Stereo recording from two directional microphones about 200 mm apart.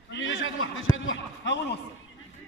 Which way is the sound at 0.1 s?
70° left (ahead or behind).